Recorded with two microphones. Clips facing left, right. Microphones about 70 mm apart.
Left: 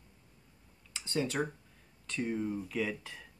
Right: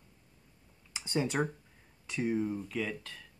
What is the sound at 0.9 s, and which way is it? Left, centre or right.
Speech, centre.